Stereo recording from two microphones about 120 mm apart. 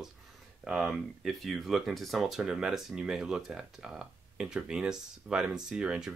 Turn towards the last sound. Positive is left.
turn(degrees=-5)  # may be behind; listen again after turning